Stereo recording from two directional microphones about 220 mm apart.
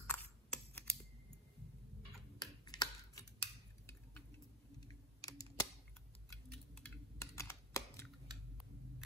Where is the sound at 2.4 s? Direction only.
20° left (ahead or behind).